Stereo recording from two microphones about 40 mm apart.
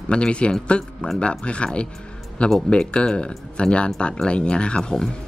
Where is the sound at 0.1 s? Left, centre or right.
Left.